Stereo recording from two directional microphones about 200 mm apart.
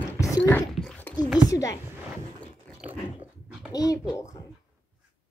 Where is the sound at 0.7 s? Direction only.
5° left (ahead or behind).